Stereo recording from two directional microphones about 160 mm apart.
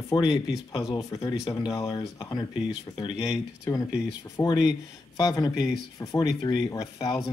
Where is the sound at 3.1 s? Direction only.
5° right (ahead or behind).